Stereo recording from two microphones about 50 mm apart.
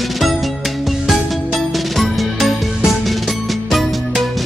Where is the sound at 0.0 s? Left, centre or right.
Centre.